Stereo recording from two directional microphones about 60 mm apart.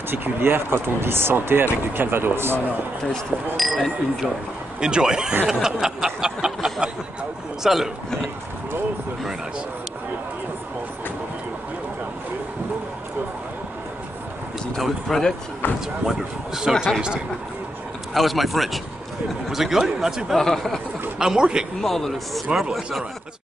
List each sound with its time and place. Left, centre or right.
0.1 s speech: right
3.5 s speech: centre
4.7 s speech: centre
5.5 s a sound: centre
7.6 s speech: centre
14.8 s speech: centre
15.6 s speech: left
16.1 s speech: centre
18.1 s speech: centre
20.3 s speech: centre
21.2 s speech: centre
21.8 s speech: centre